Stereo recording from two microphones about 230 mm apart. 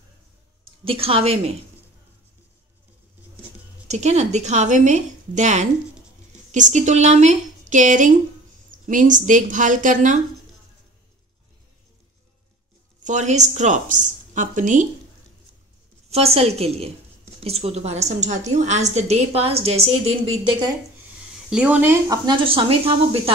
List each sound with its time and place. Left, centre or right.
0.8 s a woman's voice: right
3.8 s a woman's voice: right
13.0 s a woman's voice: right
16.1 s a woman's voice: right
21.5 s speech: centre; by 23.3 s right